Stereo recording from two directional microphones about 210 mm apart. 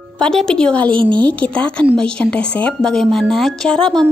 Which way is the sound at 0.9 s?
25° right (ahead or behind).